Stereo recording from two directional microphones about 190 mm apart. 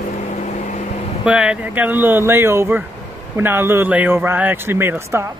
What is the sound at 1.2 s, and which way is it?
A man's voice, 5° right (ahead or behind).